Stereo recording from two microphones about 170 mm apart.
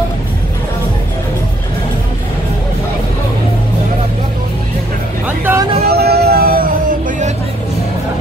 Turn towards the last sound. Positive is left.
turn(degrees=-50)  # may be behind; listen again after turning